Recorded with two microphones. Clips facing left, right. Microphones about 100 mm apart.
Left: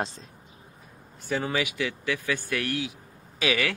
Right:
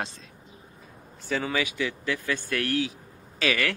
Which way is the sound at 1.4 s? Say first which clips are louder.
Right 1 dB; 15° left (ahead or behind).